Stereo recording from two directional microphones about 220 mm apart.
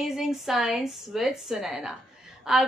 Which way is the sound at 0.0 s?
Centre (ahead or behind).